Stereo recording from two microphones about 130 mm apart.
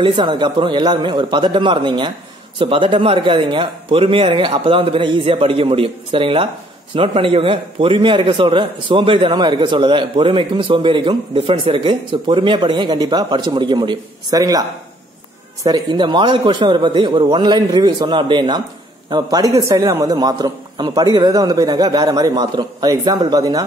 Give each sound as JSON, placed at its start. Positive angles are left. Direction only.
{"t": 0.0, "sound": "a man's voice", "side_deg": -35}